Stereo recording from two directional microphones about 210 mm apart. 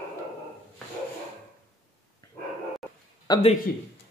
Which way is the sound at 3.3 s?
20° left (ahead or behind).